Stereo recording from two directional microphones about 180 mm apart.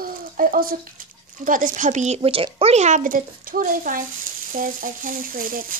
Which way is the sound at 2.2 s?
30° right (ahead or behind).